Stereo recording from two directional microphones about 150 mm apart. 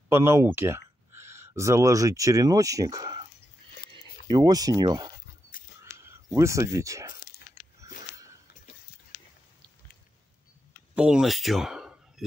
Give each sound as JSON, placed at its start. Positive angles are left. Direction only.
{"t": 0.1, "sound": "speech", "side_deg": -15}
{"t": 4.3, "sound": "speech", "side_deg": -25}
{"t": 5.5, "sound": "a sound", "side_deg": 70}
{"t": 6.0, "sound": "speech", "side_deg": -20}
{"t": 11.0, "sound": "speech", "side_deg": -5}